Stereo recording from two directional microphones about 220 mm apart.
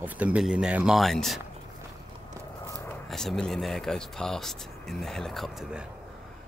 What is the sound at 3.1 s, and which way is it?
Speech, centre (ahead or behind).